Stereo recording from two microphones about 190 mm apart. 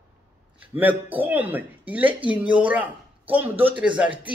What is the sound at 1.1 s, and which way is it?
Speech, 10° right (ahead or behind).